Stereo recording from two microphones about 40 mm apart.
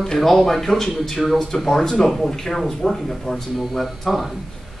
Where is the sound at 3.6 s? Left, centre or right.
Centre.